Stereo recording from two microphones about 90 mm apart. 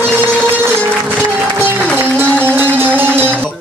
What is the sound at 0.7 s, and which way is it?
Music, 25° right (ahead or behind).